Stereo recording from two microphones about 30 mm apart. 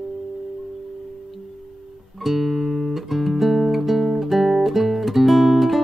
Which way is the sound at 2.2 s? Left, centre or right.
Centre.